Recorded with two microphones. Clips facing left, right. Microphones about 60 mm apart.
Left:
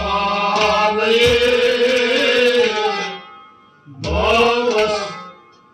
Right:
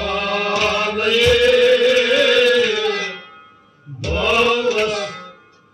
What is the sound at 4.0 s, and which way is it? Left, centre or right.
Mantra, left.